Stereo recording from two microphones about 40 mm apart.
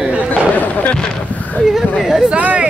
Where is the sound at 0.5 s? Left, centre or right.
Left.